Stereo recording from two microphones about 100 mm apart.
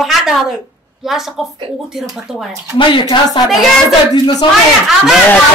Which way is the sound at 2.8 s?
50° left (ahead or behind).